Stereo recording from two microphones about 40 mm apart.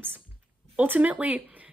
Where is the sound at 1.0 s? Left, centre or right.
Right.